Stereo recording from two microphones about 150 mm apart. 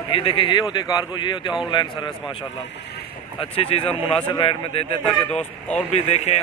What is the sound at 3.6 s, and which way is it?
A man's voice, 40° left (ahead or behind).